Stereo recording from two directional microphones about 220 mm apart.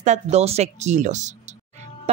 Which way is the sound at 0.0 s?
30° right (ahead or behind).